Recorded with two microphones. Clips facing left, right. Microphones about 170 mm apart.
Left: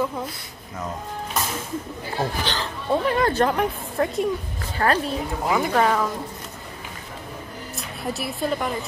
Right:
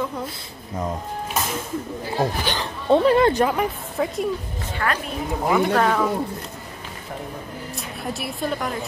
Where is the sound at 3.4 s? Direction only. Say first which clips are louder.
Even; centre (ahead or behind).